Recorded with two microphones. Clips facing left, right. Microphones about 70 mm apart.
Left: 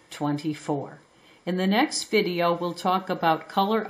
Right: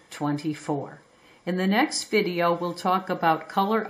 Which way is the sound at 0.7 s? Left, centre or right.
Centre.